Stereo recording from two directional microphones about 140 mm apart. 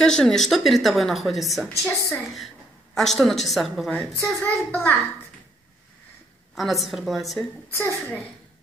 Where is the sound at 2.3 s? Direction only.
Centre (ahead or behind).